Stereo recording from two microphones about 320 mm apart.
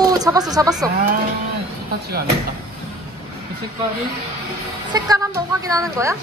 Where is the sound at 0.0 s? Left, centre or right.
Centre.